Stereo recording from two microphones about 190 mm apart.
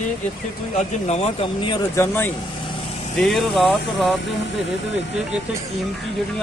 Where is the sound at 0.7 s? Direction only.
35° left (ahead or behind).